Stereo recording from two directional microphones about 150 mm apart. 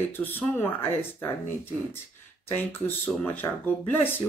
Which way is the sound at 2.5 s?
15° left (ahead or behind).